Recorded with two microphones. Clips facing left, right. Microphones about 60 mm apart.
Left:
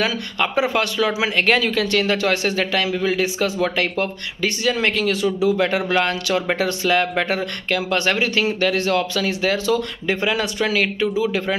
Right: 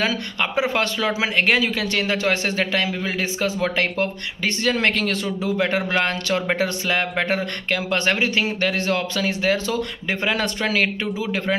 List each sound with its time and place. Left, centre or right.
0.0 s speech: right
4.6 s speech: right
5.7 s speech: right